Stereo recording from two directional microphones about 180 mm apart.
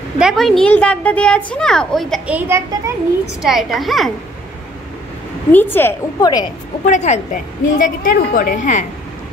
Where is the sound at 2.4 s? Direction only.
15° right (ahead or behind).